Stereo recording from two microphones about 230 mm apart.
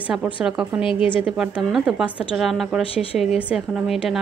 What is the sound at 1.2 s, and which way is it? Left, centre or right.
A woman's voice, centre.